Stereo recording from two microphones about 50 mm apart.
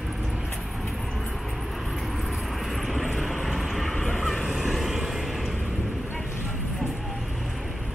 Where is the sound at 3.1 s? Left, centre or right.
Centre.